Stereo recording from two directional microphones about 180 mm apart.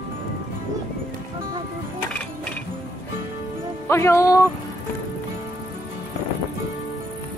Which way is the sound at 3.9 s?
15° left (ahead or behind).